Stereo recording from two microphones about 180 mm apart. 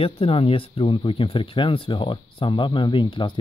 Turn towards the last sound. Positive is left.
turn(degrees=25)  # may be behind; listen again after turning